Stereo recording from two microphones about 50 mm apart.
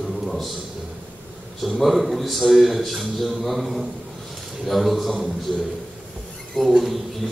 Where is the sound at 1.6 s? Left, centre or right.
Centre.